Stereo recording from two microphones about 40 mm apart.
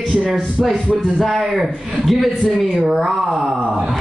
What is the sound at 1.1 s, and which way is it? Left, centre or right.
A man's voice, centre.